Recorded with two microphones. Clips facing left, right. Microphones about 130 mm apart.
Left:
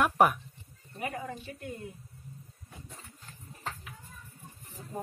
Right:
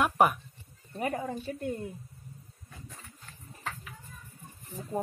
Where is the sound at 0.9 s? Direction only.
30° right (ahead or behind).